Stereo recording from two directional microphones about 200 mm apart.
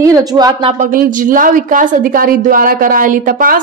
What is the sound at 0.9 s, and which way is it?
A woman's voice, 45° right (ahead or behind).